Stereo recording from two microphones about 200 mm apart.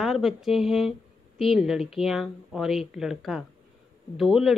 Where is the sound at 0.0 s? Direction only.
Centre (ahead or behind).